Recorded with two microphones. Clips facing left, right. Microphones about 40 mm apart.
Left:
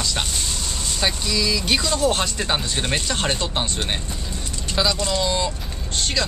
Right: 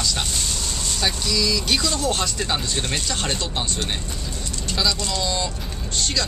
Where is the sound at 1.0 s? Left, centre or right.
Centre.